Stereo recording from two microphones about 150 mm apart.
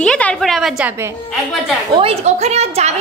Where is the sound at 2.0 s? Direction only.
40° right (ahead or behind).